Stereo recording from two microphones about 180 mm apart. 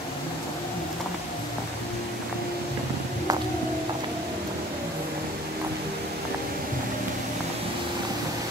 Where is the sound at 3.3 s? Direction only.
20° right (ahead or behind).